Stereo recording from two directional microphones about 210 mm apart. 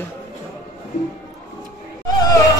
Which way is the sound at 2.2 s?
15° left (ahead or behind).